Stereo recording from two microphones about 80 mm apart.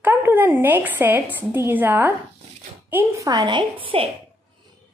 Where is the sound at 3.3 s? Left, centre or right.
Right.